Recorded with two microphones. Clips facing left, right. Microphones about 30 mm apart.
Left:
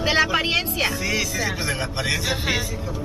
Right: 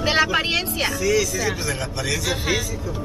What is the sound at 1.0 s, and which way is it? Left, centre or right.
Speech, left.